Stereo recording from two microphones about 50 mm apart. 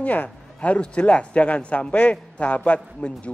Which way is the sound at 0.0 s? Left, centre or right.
Left.